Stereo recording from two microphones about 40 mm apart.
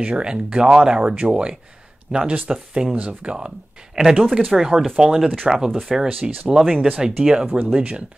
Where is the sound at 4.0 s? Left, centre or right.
Centre.